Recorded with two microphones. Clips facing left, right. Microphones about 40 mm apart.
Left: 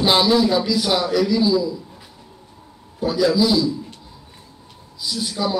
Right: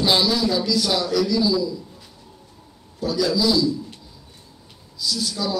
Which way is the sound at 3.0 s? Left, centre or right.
Left.